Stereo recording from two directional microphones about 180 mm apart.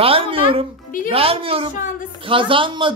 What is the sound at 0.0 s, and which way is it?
Music, 30° right (ahead or behind).